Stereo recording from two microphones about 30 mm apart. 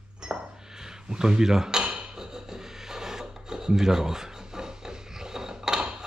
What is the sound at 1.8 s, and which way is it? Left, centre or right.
Cutlery, right.